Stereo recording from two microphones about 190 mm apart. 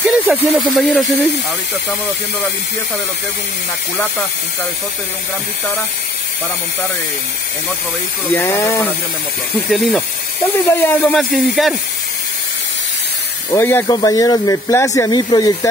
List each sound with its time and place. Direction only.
0.0 s speech: 5° right (ahead or behind)
8.3 s speech: 10° left (ahead or behind)
9.7 s speech: centre (ahead or behind)
10.7 s speech: 10° left (ahead or behind)
13.5 s speech: 10° left (ahead or behind)